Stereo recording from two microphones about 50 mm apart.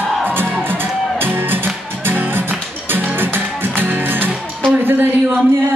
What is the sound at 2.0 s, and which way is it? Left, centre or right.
Music, right.